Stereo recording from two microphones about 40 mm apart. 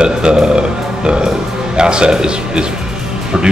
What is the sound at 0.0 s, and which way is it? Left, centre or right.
Speech, right.